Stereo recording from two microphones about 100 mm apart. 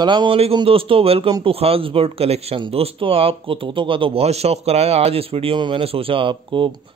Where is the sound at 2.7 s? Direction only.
75° right (ahead or behind).